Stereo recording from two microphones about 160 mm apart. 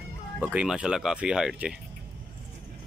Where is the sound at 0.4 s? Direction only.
5° right (ahead or behind).